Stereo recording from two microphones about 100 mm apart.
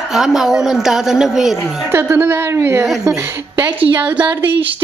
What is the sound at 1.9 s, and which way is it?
Speech, 20° right (ahead or behind).